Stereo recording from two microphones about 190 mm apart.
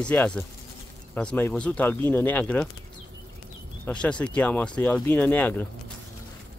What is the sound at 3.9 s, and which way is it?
Speech, 5° left (ahead or behind).